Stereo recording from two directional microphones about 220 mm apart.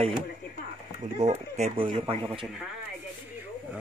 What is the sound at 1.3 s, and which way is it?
Speech, 30° right (ahead or behind).